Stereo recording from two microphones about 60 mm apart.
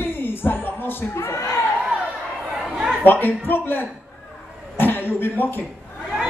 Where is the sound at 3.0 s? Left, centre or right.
Left.